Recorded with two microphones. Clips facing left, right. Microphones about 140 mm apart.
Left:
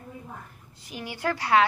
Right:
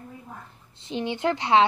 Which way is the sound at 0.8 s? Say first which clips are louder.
Right 7 dB; 25° right (ahead or behind).